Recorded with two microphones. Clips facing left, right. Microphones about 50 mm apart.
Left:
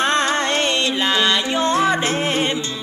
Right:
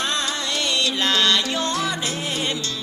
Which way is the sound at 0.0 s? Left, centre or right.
Left.